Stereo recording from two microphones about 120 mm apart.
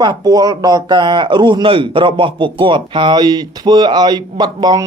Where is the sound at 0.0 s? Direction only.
35° right (ahead or behind).